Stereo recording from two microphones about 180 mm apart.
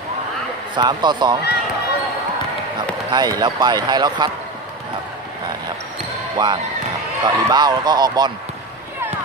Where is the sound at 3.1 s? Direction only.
20° right (ahead or behind).